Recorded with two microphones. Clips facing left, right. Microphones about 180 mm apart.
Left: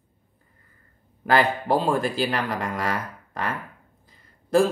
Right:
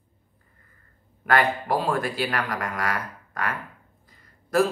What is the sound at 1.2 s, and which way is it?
Speech, 30° left (ahead or behind).